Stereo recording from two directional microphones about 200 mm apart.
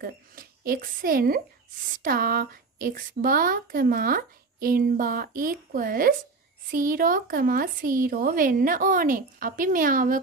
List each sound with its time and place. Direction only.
0.0 s a woman's voice: 45° right (ahead or behind)